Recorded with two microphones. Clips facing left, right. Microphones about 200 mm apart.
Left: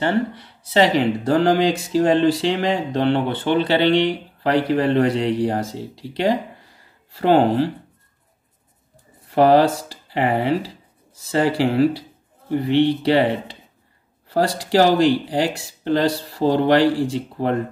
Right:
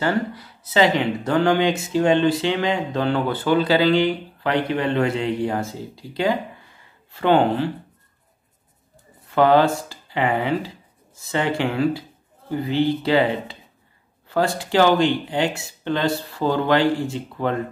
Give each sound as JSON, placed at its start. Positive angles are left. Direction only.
{"t": 0.0, "sound": "speech", "side_deg": 25}
{"t": 9.3, "sound": "speech", "side_deg": 35}